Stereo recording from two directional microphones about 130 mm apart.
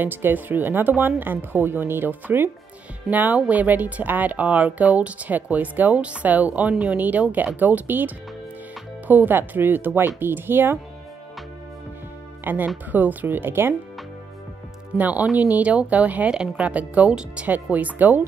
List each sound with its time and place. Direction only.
0.0 s speech: 15° right (ahead or behind)
12.4 s speech: 15° right (ahead or behind)
15.0 s speech: 10° right (ahead or behind)